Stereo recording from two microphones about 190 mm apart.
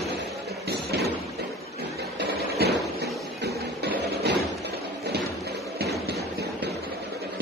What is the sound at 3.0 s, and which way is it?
Music, 60° right (ahead or behind).